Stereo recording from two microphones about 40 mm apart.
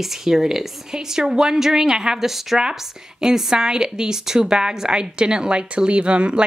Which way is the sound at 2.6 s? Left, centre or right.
Centre.